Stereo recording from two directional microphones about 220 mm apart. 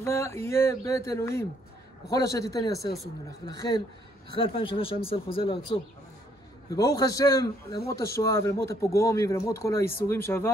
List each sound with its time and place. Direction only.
0.0 s a man's voice: 10° left (ahead or behind)
4.4 s a man's voice: 25° left (ahead or behind)